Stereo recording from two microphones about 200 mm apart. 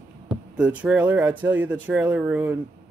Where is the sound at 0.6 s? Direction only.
5° right (ahead or behind).